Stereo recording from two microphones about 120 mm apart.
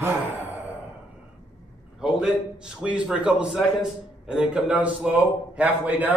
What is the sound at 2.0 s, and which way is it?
A man's voice, 5° right (ahead or behind).